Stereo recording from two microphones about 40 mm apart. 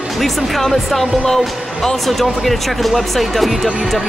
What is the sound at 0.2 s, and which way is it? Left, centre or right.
Speech, centre.